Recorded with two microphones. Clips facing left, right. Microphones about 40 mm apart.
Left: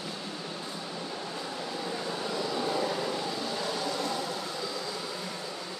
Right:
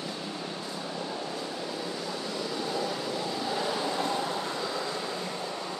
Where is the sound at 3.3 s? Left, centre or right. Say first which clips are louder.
Right 2 dB; centre; by 5.1 s right.